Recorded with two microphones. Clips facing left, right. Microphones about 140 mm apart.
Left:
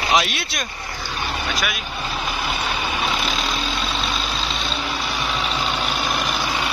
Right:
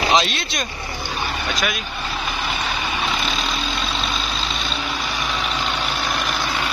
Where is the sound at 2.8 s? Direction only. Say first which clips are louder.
Even; 10° left (ahead or behind).